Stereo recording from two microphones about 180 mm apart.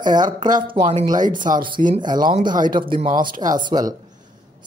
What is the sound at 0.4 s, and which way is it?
Speech, 25° right (ahead or behind).